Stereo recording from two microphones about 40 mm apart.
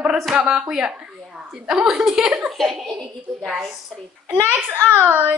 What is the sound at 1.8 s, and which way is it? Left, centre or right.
Speech, centre.